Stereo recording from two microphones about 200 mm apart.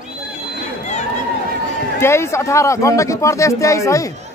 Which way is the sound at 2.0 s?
15° left (ahead or behind).